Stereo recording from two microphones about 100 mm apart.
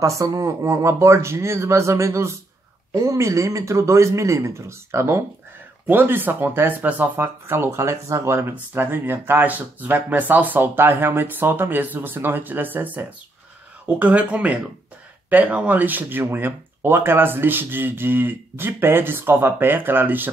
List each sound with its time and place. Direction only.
0.0 s speech: 35° right (ahead or behind); by 20.2 s 20° right (ahead or behind)